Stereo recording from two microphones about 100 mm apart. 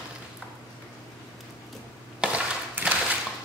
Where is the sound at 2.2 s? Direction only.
15° right (ahead or behind).